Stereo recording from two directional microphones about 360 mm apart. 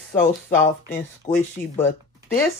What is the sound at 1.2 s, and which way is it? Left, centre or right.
Speech, centre.